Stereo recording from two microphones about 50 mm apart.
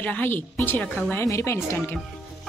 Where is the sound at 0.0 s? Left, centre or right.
Left.